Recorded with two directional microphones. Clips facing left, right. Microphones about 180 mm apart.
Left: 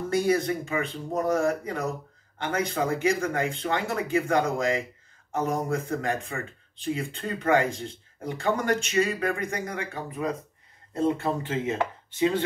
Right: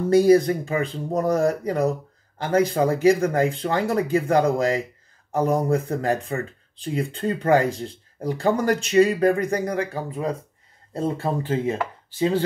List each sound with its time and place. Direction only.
0.1 s speech: 35° right (ahead or behind)